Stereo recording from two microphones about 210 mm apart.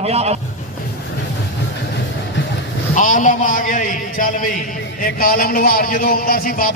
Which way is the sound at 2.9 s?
40° left (ahead or behind).